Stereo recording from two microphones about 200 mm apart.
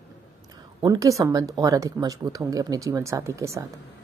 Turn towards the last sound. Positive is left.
turn(degrees=-15)  # may be behind; listen again after turning